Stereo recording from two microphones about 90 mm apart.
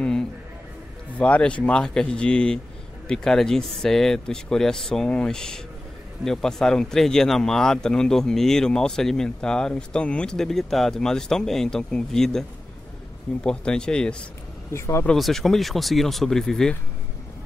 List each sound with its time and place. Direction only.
0.0 s a sound: 10° left (ahead or behind)
1.1 s speech: 15° left (ahead or behind)
14.7 s speech: 30° left (ahead or behind)
15.1 s speech: centre (ahead or behind)